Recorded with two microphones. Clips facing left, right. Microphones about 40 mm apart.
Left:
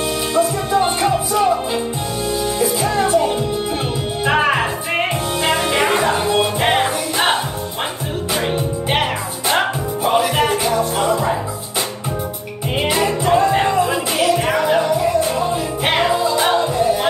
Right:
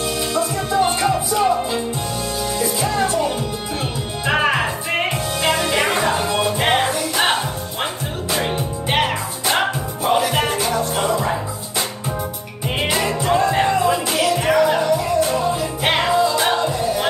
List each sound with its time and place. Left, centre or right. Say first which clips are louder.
0.3 s music: left 6 dB; centre
2.6 s music: left 2 dB; centre
6.6 s music: left 1 dB; centre
8.4 s music: left 3 dB; centre
12.8 s music: left 2 dB; centre
15.8 s music: even; centre